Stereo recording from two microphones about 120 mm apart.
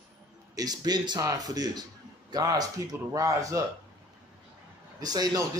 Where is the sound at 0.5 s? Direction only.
35° right (ahead or behind).